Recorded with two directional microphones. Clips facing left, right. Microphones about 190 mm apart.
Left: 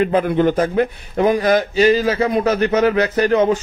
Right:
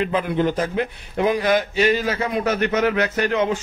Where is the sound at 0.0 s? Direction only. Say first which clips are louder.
Left 5 dB; 45° left (ahead or behind).